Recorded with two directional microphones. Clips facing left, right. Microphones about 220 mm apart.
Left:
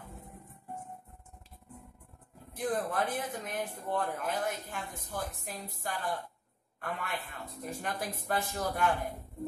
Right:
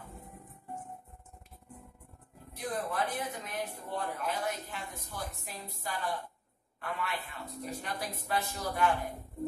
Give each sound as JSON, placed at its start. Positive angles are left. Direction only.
{"t": 2.5, "sound": "speech", "side_deg": 50}